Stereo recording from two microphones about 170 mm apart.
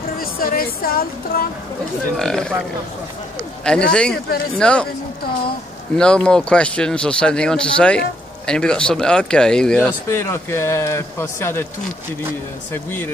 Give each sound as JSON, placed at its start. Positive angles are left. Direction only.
{"t": 0.2, "sound": "speech", "side_deg": 60}
{"t": 2.1, "sound": "speech", "side_deg": 5}
{"t": 3.6, "sound": "speech", "side_deg": 5}
{"t": 5.9, "sound": "speech", "side_deg": 5}
{"t": 12.7, "sound": "speech", "side_deg": 15}